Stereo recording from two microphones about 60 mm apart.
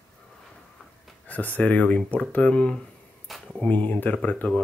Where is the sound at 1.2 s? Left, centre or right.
Left.